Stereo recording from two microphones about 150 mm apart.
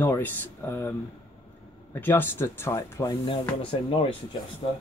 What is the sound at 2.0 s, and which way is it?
Speech, 15° left (ahead or behind).